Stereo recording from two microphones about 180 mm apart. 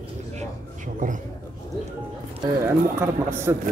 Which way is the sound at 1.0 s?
50° right (ahead or behind).